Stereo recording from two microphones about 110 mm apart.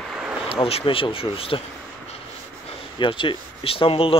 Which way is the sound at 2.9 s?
50° left (ahead or behind).